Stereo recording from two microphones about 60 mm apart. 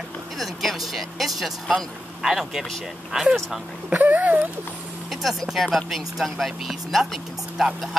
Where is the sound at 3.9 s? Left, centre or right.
Right.